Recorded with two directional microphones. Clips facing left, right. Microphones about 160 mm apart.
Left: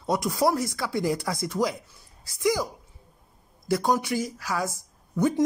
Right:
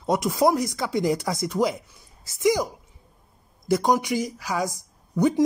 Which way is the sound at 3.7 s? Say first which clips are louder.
Right 3 dB; 20° right (ahead or behind).